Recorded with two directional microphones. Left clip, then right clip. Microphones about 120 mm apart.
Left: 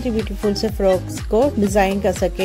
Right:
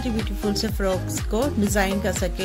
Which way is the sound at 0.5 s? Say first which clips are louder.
Left 5 dB; 35° left (ahead or behind).